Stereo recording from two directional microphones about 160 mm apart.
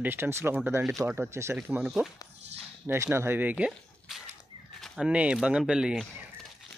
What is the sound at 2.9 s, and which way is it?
Speech, 15° right (ahead or behind).